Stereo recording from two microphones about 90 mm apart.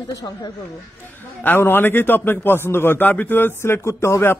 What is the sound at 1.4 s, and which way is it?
A man's voice, 25° left (ahead or behind).